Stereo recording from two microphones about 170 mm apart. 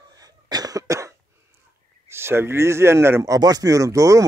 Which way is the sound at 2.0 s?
15° right (ahead or behind).